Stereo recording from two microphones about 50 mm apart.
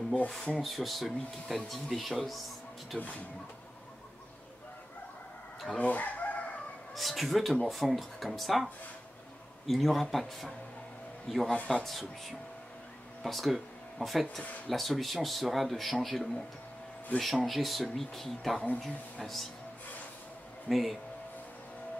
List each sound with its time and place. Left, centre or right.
0.6 s speech: centre
2.9 s speech: centre
5.8 s chicken: left
7.0 s speech: centre
9.7 s speech: centre
13.2 s speech: centre
20.6 s speech: centre